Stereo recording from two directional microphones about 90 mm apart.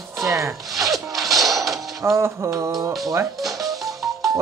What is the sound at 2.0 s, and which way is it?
Music, 30° right (ahead or behind).